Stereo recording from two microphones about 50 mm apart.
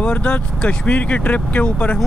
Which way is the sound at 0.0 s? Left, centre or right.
Left.